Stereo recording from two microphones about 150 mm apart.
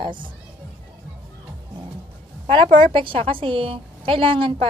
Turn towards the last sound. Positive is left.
turn(degrees=-35)  # may be behind; listen again after turning